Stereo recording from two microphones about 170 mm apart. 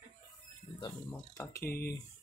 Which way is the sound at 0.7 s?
30° left (ahead or behind).